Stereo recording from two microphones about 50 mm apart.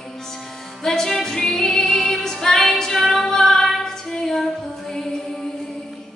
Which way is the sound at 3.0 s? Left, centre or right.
Centre.